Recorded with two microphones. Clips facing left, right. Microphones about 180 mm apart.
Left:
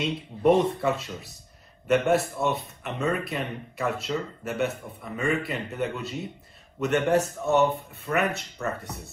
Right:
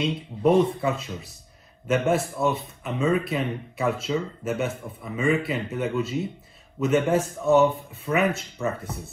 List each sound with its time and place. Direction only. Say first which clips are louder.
0.0 s speech: right 1 dB; centre (ahead or behind)